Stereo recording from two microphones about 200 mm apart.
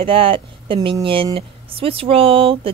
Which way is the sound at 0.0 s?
25° right (ahead or behind).